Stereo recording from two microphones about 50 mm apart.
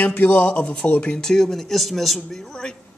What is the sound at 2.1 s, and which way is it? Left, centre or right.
Speech, centre.